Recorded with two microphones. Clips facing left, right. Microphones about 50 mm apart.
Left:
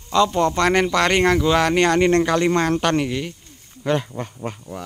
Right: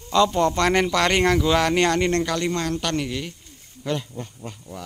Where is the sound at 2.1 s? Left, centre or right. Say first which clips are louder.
Left 6 dB; left.